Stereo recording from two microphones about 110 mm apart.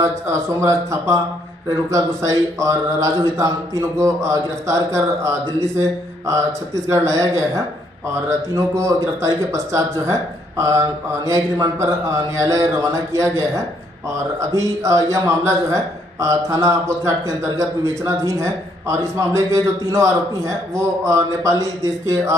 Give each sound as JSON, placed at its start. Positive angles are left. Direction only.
{"t": 0.0, "sound": "a man's voice", "side_deg": -25}
{"t": 11.2, "sound": "a man's voice", "side_deg": -30}